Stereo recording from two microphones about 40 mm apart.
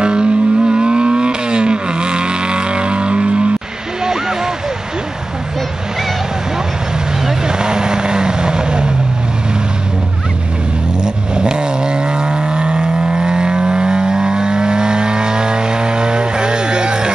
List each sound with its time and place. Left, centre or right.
0.0 s vehicle: right
4.0 s vehicle: centre
7.2 s vehicle: centre
11.0 s vehicle: right